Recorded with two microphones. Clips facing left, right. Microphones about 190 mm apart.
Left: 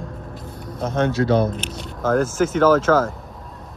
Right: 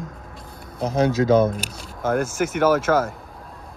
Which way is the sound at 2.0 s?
10° right (ahead or behind).